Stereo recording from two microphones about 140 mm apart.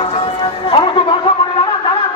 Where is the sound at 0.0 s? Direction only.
50° left (ahead or behind).